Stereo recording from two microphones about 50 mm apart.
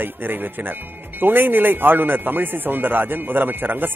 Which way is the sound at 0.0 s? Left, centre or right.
Right.